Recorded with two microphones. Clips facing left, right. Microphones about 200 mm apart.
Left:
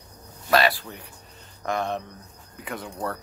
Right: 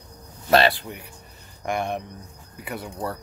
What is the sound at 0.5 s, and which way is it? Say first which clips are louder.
Speech: right 3 dB; 25° right (ahead or behind).